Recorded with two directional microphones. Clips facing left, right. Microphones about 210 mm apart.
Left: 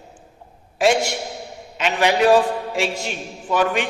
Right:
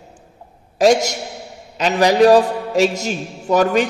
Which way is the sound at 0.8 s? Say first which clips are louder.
Right 4 dB; 40° right (ahead or behind).